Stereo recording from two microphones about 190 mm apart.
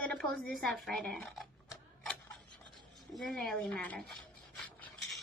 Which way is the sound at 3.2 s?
Centre (ahead or behind).